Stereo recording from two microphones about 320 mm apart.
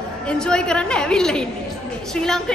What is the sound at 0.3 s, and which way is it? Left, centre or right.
A woman's voice, centre.